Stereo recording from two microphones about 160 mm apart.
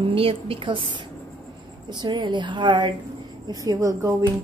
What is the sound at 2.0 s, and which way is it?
Speech, 30° right (ahead or behind).